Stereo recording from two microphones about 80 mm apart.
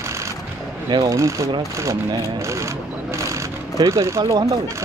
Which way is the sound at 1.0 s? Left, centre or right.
Right.